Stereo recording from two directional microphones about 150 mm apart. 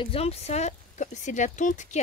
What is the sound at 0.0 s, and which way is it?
Speech, 40° left (ahead or behind).